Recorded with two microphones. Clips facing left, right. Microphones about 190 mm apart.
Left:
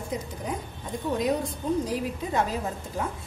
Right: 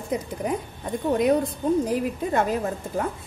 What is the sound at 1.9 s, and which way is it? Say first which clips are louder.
Speech: right 4 dB; 55° right (ahead or behind).